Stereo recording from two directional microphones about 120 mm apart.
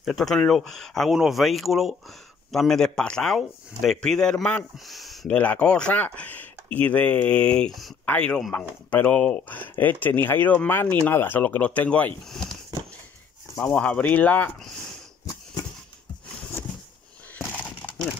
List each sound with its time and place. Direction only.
0.0 s speech: centre (ahead or behind)
5.3 s speech: 10° left (ahead or behind)
12.3 s speech: centre (ahead or behind)
13.6 s speech: 10° left (ahead or behind)
17.4 s a sound: 15° left (ahead or behind)